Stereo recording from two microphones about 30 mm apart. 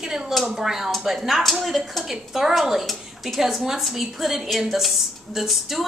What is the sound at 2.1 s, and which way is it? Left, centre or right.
A woman's voice, centre.